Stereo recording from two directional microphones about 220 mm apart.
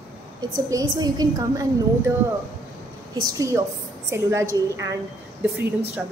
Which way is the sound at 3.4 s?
15° right (ahead or behind).